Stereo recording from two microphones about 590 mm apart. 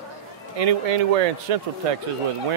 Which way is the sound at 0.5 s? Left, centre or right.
Right.